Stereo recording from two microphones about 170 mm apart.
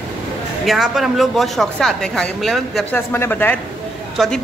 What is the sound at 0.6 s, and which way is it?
Speech, centre (ahead or behind).